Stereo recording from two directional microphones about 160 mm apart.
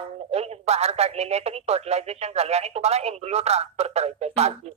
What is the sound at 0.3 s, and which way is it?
Speech, 40° right (ahead or behind).